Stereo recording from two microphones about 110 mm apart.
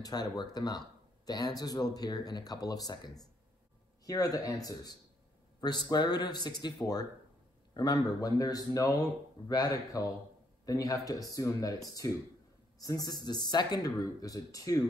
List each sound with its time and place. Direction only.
0.0 s speech: 40° left (ahead or behind)